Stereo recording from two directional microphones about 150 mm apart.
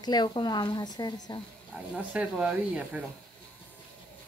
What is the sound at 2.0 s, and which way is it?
Speech, 10° right (ahead or behind).